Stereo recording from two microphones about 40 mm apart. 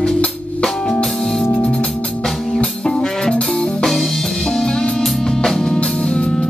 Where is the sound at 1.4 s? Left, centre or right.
Left.